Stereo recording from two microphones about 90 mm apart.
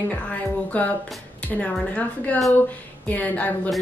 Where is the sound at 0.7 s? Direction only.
15° left (ahead or behind).